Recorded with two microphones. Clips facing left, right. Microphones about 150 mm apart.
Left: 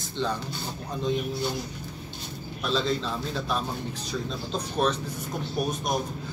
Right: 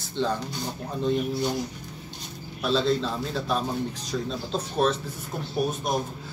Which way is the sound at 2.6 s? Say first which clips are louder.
Right 3 dB; 10° right (ahead or behind).